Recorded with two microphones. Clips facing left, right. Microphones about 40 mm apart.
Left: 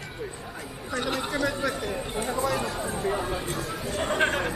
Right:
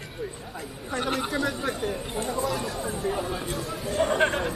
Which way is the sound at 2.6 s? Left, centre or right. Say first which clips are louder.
Left 1 dB; centre.